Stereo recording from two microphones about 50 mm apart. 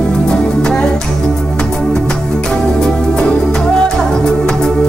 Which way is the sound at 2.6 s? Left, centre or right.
Centre.